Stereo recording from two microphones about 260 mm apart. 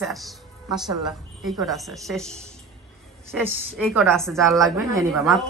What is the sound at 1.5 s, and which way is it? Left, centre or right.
A woman's voice, centre.